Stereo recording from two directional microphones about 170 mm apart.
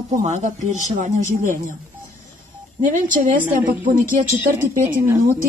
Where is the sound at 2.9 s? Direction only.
50° right (ahead or behind).